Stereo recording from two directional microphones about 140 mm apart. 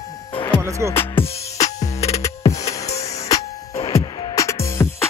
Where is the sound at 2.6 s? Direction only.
50° left (ahead or behind).